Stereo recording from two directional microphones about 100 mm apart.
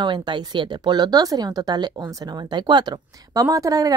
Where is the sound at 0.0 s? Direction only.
50° right (ahead or behind).